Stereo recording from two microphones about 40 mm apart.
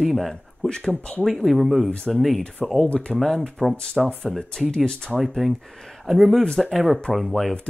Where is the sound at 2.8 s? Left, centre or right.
Left.